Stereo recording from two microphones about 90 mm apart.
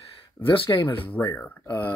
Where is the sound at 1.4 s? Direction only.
25° left (ahead or behind).